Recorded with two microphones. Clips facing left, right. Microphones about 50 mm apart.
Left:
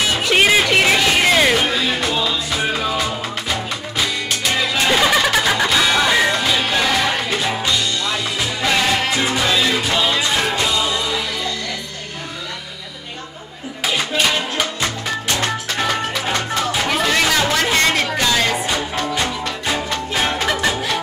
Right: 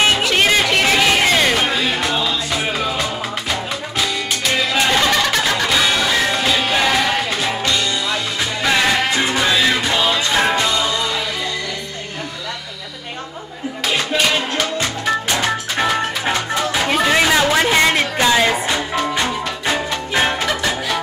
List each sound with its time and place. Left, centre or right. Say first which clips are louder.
0.3 s music: left 1 dB; centre
1.7 s music: right 1 dB; centre
4.7 s music: left 1 dB; centre
9.1 s music: right 1 dB; right
13.8 s music: right 1 dB; centre
15.2 s music: right 2 dB; centre